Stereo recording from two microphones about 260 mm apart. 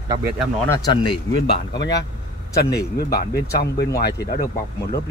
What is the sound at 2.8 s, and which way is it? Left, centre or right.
Speech, left.